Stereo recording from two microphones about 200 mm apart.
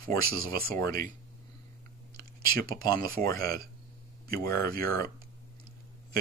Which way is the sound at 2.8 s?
20° left (ahead or behind).